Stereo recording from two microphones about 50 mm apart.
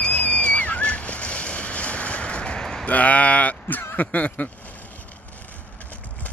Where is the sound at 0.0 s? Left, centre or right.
Left.